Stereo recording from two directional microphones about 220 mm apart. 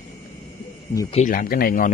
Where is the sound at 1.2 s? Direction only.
40° left (ahead or behind).